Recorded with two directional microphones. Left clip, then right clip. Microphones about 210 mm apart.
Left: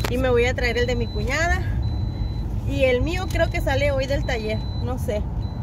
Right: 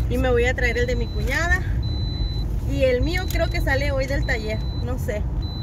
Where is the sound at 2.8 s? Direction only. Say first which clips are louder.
Even; 10° left (ahead or behind).